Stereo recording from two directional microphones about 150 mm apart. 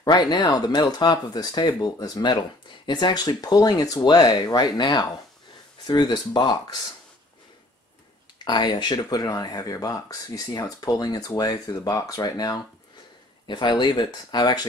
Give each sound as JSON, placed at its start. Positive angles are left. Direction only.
{"t": 0.0, "sound": "speech", "side_deg": 30}
{"t": 8.5, "sound": "speech", "side_deg": 30}